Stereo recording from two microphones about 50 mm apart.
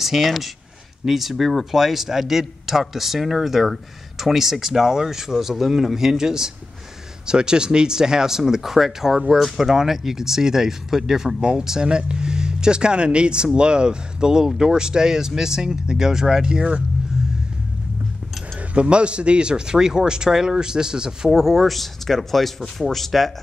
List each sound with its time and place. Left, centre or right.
0.0 s speech: centre
18.8 s speech: right; by 23.3 s centre